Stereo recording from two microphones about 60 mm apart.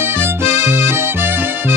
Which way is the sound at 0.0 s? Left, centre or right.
Right.